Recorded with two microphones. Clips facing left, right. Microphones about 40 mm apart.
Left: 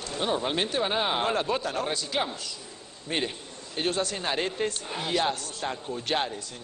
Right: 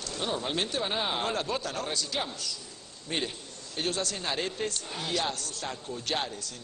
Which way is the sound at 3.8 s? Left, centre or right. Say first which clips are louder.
Left 3 dB; left.